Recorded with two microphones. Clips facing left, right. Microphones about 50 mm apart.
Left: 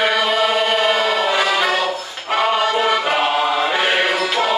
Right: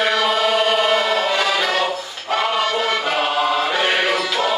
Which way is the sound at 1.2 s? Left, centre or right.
Centre.